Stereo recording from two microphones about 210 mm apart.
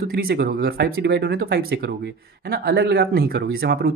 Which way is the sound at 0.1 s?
45° right (ahead or behind).